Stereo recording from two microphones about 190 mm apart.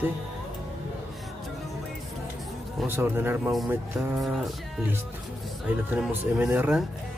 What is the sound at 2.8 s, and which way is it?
Speech, 10° right (ahead or behind).